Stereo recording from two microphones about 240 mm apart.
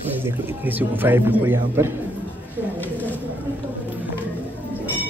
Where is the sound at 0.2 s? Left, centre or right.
Centre.